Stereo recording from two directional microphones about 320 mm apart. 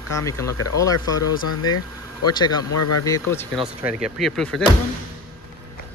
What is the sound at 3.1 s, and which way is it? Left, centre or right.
Speech, centre.